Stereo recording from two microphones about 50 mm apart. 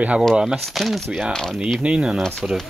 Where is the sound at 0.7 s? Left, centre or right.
Centre.